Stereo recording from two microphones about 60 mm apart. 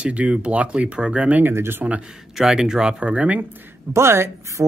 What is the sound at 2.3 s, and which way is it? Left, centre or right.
Speech, centre.